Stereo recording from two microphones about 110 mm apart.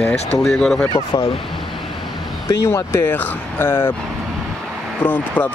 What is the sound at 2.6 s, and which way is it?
Speech, 25° left (ahead or behind).